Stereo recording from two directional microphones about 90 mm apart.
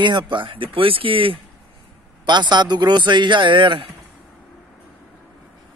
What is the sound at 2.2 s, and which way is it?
Speech, 55° right (ahead or behind).